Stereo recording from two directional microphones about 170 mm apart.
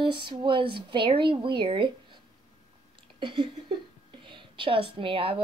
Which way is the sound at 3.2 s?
30° right (ahead or behind).